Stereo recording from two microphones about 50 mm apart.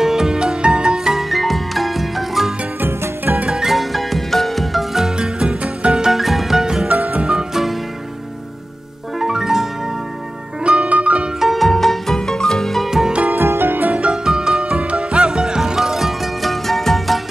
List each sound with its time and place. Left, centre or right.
0.0 s music: centre
2.8 s music: right
3.4 s music: centre
5.1 s music: centre
6.1 s music: centre
6.9 s music: right
7.2 s music: centre
9.2 s music: centre
10.6 s music: right
11.3 s music: centre
13.4 s music: right
13.8 s music: right
14.1 s music: centre